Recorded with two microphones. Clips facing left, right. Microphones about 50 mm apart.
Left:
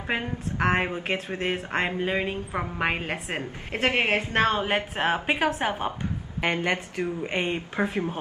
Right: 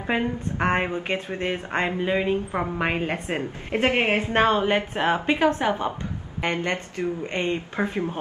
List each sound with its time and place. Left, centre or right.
0.0 s a woman's voice: centre
3.7 s a woman's voice: centre
4.6 s a woman's voice: centre